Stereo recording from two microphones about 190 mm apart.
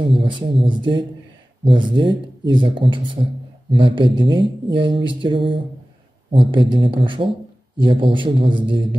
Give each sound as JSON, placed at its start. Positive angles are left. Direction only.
{"t": 0.1, "sound": "speech", "side_deg": -25}